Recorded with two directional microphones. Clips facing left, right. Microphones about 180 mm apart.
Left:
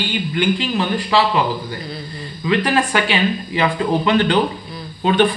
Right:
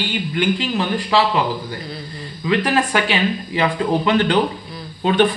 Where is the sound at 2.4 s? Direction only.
45° right (ahead or behind).